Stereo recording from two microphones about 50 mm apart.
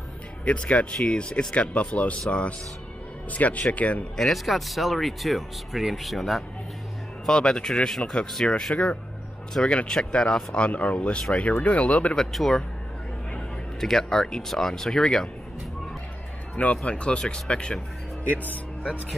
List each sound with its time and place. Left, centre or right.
0.5 s speech: left
4.2 s speech: centre
7.2 s speech: centre
12.2 s speech: centre
13.7 s speech: centre
16.5 s speech: left
18.2 s speech: left